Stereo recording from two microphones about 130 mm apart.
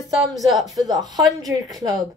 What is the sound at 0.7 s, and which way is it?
A woman's voice, 30° right (ahead or behind).